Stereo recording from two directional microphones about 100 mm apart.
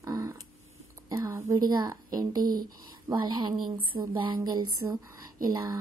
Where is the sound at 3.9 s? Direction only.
35° right (ahead or behind).